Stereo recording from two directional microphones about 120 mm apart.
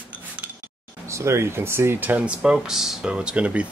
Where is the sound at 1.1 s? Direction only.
25° right (ahead or behind).